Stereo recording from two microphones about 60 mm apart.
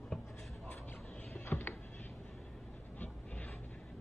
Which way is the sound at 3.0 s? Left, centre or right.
Left.